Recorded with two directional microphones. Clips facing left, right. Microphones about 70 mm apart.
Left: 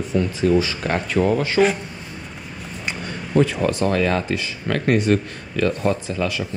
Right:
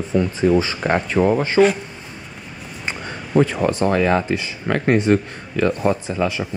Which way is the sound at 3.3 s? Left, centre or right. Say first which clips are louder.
Right 1 dB; right.